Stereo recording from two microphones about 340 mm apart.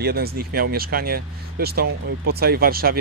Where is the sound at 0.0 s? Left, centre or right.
Right.